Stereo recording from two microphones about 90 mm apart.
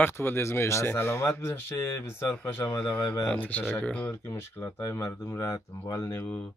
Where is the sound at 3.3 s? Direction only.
20° left (ahead or behind).